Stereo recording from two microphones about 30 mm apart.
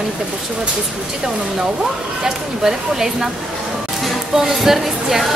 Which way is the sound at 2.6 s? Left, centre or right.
Centre.